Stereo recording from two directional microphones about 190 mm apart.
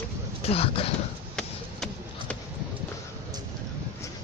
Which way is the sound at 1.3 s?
5° left (ahead or behind).